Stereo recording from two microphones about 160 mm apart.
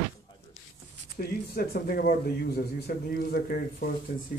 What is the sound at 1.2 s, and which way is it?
A man's voice, 65° left (ahead or behind).